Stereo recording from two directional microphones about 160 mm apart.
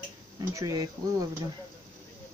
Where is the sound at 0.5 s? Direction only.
20° right (ahead or behind).